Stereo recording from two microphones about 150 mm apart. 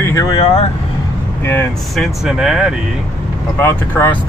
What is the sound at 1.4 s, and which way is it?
Speech, 15° left (ahead or behind).